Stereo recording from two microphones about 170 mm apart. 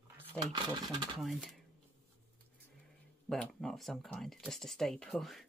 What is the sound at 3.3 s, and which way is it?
Speech, centre (ahead or behind).